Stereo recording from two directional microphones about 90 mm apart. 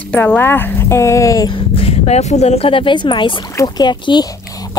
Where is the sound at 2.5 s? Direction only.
85° left.